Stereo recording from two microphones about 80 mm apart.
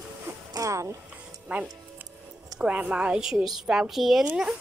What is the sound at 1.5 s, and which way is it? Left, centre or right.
A woman's voice, centre.